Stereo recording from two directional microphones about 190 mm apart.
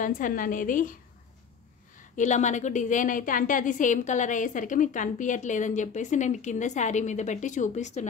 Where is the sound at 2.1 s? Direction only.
40° left (ahead or behind).